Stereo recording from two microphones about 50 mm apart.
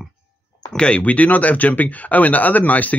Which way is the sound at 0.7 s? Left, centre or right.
Left.